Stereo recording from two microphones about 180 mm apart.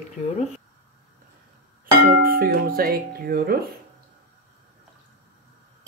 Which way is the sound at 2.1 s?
55° right (ahead or behind).